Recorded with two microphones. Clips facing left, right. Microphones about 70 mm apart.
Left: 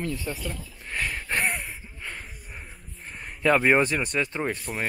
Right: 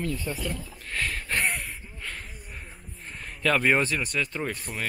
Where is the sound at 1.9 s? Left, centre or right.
Centre.